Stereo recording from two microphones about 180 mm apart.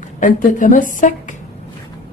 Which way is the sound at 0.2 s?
45° left (ahead or behind).